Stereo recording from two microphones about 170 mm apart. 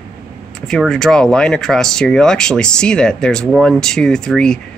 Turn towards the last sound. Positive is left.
turn(degrees=5)  # may be behind; listen again after turning